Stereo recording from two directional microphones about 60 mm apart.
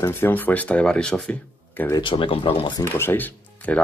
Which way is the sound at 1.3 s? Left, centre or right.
Left.